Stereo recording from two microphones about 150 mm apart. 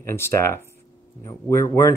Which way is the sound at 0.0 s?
15° left (ahead or behind).